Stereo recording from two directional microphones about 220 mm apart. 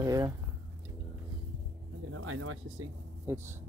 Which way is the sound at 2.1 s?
70° right (ahead or behind).